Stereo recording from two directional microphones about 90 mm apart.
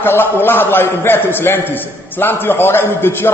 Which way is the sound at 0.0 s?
25° left (ahead or behind).